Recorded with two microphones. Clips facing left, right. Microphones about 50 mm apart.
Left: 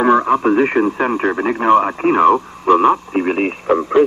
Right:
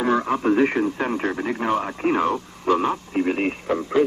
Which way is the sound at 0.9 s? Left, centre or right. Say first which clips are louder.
Left 7 dB; left.